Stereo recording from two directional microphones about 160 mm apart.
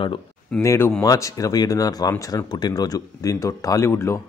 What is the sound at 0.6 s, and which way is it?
Speech, 15° left (ahead or behind).